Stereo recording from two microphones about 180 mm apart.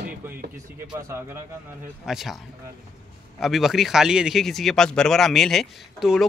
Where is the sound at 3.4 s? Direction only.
Centre (ahead or behind).